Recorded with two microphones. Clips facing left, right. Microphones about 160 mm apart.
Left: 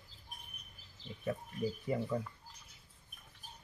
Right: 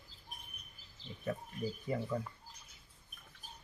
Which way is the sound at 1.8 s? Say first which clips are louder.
Even; 10° left (ahead or behind).